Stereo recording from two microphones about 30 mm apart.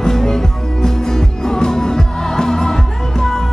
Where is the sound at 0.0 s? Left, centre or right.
Centre.